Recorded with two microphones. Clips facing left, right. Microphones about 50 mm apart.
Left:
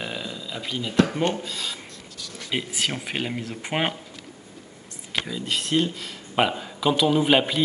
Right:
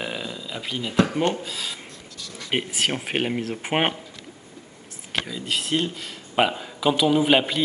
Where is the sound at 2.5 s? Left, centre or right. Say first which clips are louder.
Right 3 dB; right.